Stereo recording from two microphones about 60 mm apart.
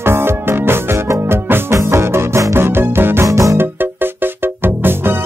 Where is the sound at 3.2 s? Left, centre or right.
Right.